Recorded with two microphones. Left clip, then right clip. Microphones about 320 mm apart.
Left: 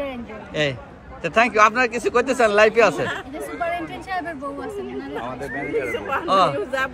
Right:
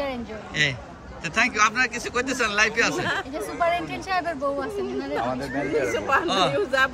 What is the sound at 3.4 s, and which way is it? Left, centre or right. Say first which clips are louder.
Speech: right 2 dB; centre.